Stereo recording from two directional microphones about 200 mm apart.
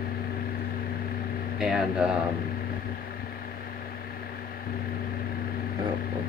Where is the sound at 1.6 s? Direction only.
Centre (ahead or behind).